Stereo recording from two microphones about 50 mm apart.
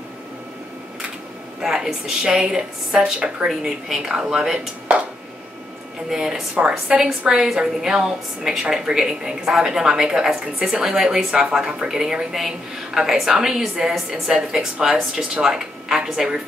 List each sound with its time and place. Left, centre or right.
1.6 s a woman's voice: centre
3.0 s a woman's voice: right
3.4 s a woman's voice: centre
6.0 s a woman's voice: centre